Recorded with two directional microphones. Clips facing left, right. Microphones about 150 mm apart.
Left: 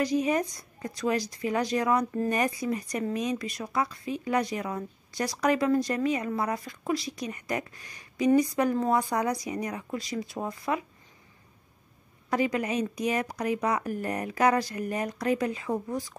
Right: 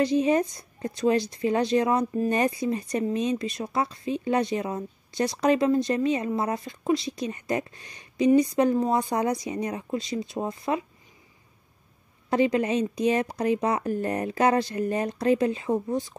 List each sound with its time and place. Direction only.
0.0 s speech: 25° right (ahead or behind)
12.3 s speech: 25° right (ahead or behind)